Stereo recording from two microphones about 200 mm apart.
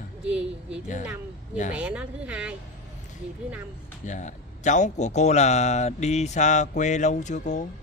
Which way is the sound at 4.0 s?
40° left (ahead or behind).